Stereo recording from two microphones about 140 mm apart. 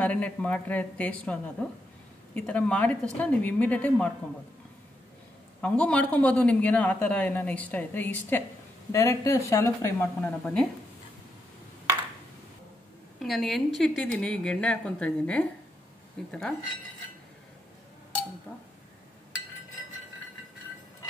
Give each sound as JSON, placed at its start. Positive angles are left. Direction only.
{"t": 0.0, "sound": "a man's voice", "side_deg": 10}
{"t": 5.6, "sound": "a man's voice", "side_deg": 10}
{"t": 10.4, "sound": "speech", "side_deg": 5}
{"t": 13.2, "sound": "a man's voice", "side_deg": 0}
{"t": 18.5, "sound": "a man's voice", "side_deg": 15}